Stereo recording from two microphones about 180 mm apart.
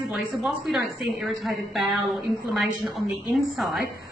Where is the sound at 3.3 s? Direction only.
Centre (ahead or behind).